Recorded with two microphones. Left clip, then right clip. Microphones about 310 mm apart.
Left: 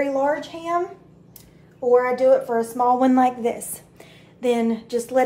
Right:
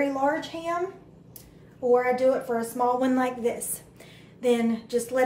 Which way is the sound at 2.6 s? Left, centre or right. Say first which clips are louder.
Left 6 dB; centre.